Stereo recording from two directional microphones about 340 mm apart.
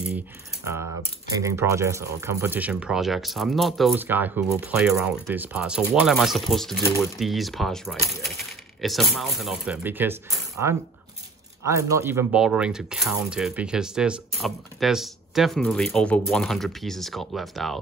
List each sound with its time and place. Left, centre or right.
1.3 s speech: centre